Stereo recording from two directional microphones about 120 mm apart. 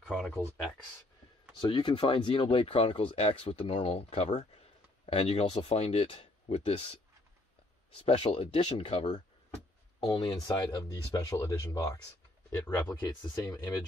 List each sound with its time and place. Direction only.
0.0 s speech: 5° left (ahead or behind)
1.6 s speech: 40° left (ahead or behind)
8.0 s speech: 45° left (ahead or behind)
9.9 s speech: 35° left (ahead or behind)